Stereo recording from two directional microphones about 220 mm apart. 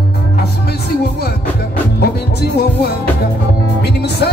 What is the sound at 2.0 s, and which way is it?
Music, 45° left (ahead or behind).